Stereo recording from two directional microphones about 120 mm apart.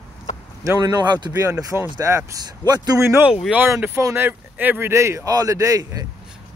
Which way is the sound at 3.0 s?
20° right (ahead or behind).